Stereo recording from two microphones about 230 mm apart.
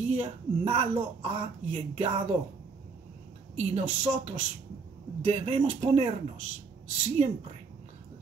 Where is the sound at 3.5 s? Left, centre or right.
Right.